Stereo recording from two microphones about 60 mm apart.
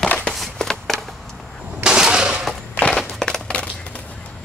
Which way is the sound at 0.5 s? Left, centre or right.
Centre.